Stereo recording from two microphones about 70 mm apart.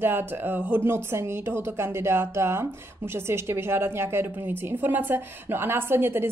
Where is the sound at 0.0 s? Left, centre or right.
Right.